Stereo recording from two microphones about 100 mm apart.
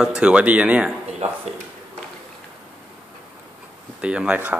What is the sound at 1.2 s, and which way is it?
Speech, 90° right.